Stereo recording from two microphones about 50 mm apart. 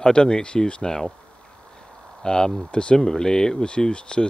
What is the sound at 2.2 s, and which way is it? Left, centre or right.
Speech, centre.